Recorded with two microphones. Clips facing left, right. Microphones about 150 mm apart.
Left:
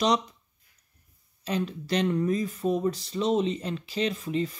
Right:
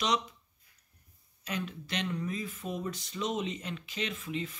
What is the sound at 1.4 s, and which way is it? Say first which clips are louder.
Speech: left 7 dB; 35° left (ahead or behind).